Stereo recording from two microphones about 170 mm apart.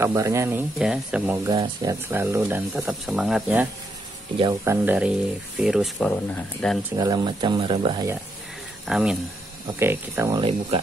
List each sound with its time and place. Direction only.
0.0 s speech: 15° right (ahead or behind)
4.4 s speech: 20° right (ahead or behind)
4.8 s speech: 5° right (ahead or behind)
7.0 s speech: 25° right (ahead or behind)
8.8 s speech: 5° right (ahead or behind)
9.8 s speech: 15° right (ahead or behind)